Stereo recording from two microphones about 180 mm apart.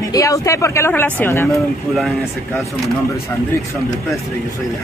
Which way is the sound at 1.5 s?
Centre (ahead or behind).